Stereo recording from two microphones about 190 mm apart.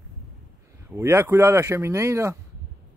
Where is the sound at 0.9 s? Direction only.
15° right (ahead or behind).